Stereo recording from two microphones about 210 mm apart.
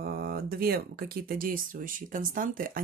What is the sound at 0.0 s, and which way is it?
Speech, 45° right (ahead or behind).